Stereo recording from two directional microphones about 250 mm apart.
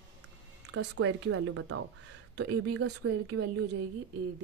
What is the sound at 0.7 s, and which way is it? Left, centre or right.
Speech, right.